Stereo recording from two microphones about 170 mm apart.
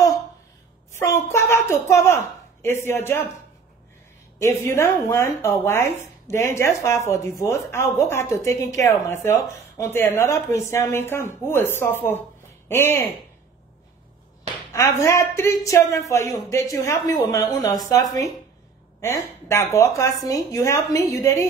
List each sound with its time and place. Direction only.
0.9 s a sound: 15° left (ahead or behind)
2.6 s speech: 15° left (ahead or behind)
4.4 s speech: 15° left (ahead or behind)
14.7 s a woman's voice: 15° left (ahead or behind)